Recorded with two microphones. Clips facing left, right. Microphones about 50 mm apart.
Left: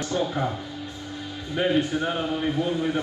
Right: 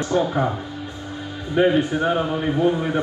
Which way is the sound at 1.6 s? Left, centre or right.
Right.